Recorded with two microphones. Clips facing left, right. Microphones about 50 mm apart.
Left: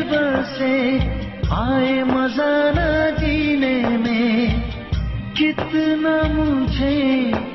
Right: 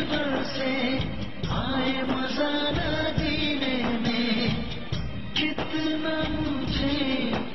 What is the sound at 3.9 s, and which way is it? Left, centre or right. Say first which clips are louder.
Music: left 8 dB; left.